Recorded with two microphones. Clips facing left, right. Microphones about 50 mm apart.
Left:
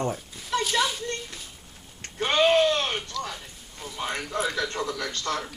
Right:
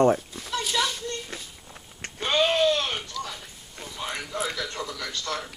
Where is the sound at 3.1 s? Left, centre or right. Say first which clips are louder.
Left 2 dB; centre.